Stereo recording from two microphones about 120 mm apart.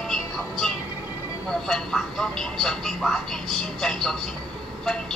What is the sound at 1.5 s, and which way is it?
Speech, 5° left (ahead or behind).